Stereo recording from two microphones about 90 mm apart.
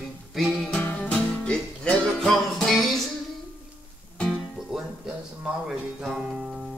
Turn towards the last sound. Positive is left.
turn(degrees=0)  # may be behind; listen again after turning